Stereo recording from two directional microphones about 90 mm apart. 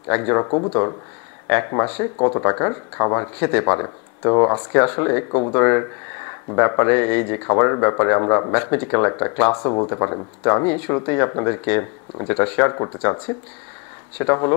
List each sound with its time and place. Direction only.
0.1 s speech: 25° left (ahead or behind)
4.6 s speech: 20° left (ahead or behind)
9.6 s speech: 35° left (ahead or behind)